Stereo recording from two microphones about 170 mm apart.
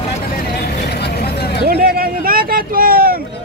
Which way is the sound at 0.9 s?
75° left (ahead or behind).